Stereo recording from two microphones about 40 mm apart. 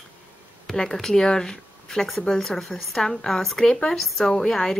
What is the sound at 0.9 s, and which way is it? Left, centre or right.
Speech, centre.